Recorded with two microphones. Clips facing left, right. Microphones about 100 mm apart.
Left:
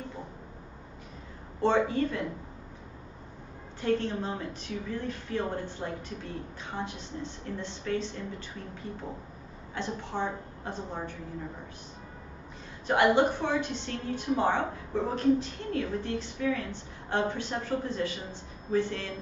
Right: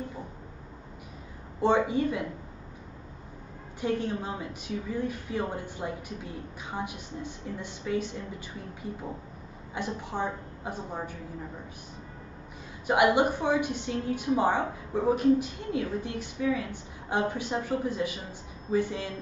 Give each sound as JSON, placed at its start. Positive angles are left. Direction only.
{"t": 1.6, "sound": "a woman's voice", "side_deg": -10}
{"t": 3.8, "sound": "a woman's voice", "side_deg": -10}
{"t": 9.8, "sound": "a woman's voice", "side_deg": -10}
{"t": 12.8, "sound": "a woman's voice", "side_deg": -10}